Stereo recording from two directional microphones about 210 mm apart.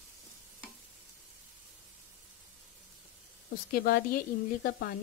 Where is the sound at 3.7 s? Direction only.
45° left (ahead or behind).